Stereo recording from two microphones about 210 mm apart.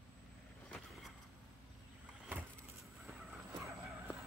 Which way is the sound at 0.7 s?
5° left (ahead or behind).